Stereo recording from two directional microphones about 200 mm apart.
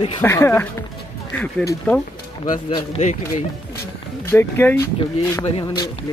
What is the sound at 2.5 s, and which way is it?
Speech, 25° left (ahead or behind).